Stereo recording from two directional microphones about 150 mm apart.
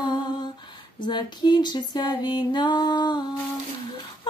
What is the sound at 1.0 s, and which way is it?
Music, 30° left (ahead or behind).